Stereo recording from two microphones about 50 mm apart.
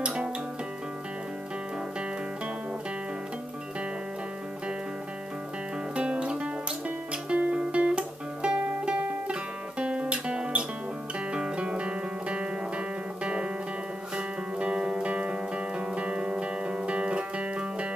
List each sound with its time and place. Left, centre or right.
0.0 s music: centre
5.9 s music: right